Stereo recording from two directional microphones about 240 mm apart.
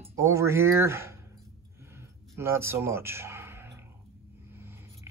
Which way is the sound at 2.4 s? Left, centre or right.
Centre.